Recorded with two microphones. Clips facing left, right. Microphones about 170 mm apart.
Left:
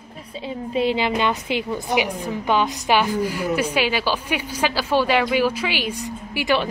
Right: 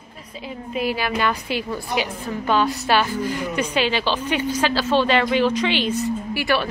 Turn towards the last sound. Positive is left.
turn(degrees=15)  # may be behind; listen again after turning